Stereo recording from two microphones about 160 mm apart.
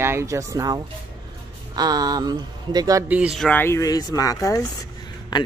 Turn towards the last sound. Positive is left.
turn(degrees=25)  # may be behind; listen again after turning